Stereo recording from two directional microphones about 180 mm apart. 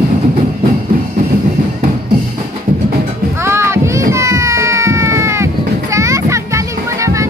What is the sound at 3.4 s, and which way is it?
Music, 15° right (ahead or behind).